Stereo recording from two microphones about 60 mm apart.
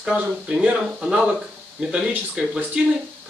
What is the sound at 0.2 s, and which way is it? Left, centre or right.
Speech, right.